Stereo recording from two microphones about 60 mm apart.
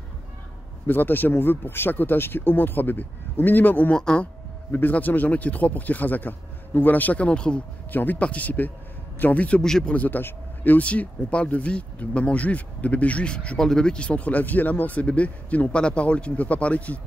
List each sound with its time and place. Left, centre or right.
0.8 s speech: left
4.0 s speech: centre
4.6 s speech: left; by 7.6 s centre
7.9 s speech: left
9.6 s speech: centre
9.9 s speech: left